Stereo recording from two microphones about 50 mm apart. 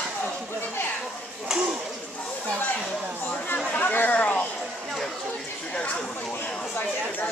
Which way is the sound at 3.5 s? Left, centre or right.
Left.